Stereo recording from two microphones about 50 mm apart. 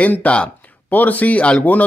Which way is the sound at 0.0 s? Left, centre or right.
Left.